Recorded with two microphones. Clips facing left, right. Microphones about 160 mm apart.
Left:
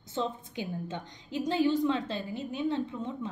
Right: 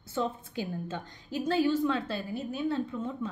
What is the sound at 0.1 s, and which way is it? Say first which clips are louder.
A woman's voice: right 1 dB; 20° left (ahead or behind).